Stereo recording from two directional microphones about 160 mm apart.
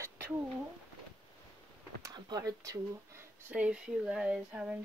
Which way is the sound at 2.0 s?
25° right (ahead or behind).